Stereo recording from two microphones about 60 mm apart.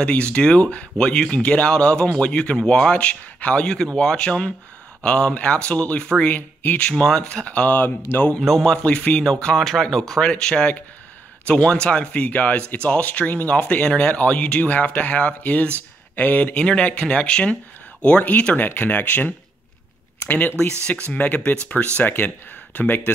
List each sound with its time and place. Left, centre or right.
0.0 s speech: centre
3.6 s speech: centre
6.3 s speech: left
6.8 s speech: centre
8.4 s speech: centre
10.3 s speech: centre